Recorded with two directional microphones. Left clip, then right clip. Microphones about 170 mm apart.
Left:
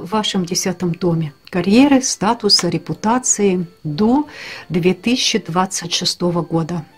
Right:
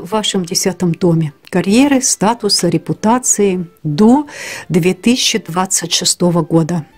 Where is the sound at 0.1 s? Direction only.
55° right (ahead or behind).